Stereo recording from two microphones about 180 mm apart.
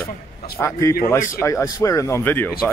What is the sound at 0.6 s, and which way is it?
Speech, 15° left (ahead or behind).